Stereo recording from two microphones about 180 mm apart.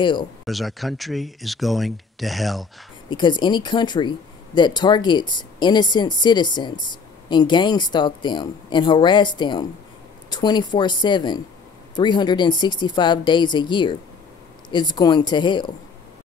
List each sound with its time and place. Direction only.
0.0 s speech: 25° left (ahead or behind)
0.5 s speech: centre (ahead or behind)
3.1 s speech: 25° left (ahead or behind)